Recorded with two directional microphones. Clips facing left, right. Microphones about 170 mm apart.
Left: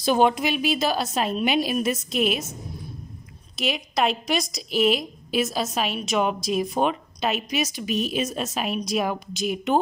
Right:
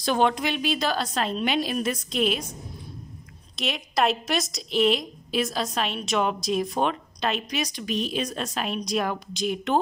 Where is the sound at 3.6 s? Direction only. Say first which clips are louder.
Left 1 dB; 5° left (ahead or behind).